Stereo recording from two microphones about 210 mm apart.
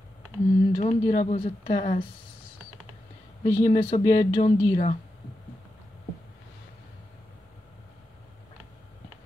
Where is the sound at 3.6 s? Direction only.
30° left (ahead or behind).